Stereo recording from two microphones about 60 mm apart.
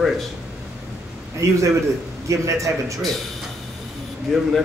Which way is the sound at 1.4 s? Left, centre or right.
Right.